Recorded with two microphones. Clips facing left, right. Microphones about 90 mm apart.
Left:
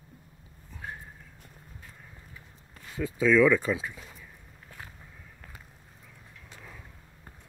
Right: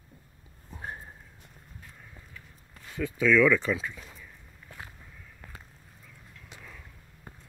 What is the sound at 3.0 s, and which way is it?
Speech, 15° left (ahead or behind).